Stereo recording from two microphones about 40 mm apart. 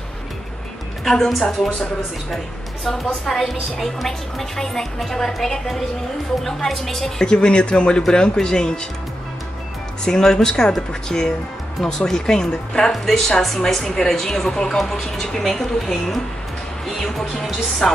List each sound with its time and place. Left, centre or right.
1.0 s a woman's voice: centre
2.3 s a woman's voice: centre
7.2 s a woman's voice: left
10.0 s a woman's voice: centre
12.9 s a woman's voice: centre
16.8 s music: centre
17.8 s a woman's voice: centre